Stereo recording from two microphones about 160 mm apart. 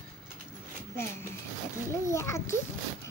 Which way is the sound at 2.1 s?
15° left (ahead or behind).